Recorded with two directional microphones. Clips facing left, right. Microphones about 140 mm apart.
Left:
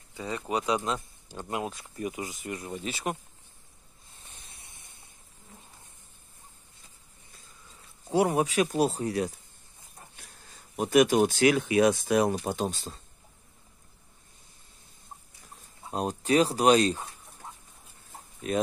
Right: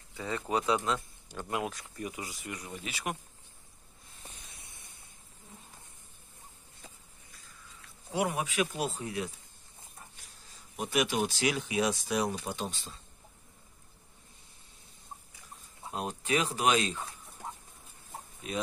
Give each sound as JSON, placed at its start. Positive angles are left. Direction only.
{"t": 0.2, "sound": "speech", "side_deg": 15}
{"t": 8.1, "sound": "speech", "side_deg": 35}
{"t": 10.8, "sound": "speech", "side_deg": 45}
{"t": 15.9, "sound": "speech", "side_deg": 35}